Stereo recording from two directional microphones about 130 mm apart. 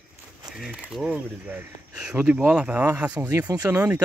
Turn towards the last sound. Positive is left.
turn(degrees=-10)  # may be behind; listen again after turning